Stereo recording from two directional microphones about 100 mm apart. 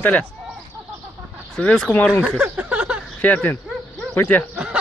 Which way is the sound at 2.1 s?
10° right (ahead or behind).